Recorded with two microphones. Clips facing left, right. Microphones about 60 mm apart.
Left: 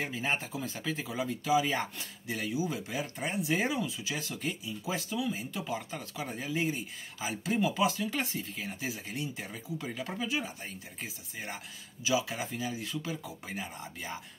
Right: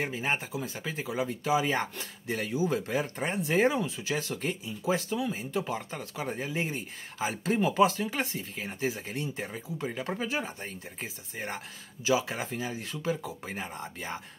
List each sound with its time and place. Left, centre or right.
0.0 s speech: right
8.1 s speech: right